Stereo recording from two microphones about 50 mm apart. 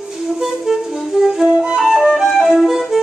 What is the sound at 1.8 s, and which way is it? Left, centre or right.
Flute, centre.